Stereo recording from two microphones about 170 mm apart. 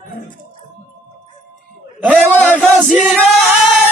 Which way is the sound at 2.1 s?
10° left (ahead or behind).